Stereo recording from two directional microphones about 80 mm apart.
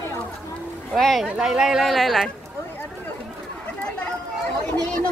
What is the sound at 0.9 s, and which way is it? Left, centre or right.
Speech, centre.